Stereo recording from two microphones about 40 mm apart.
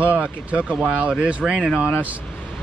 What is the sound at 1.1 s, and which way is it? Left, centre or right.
Speech, right.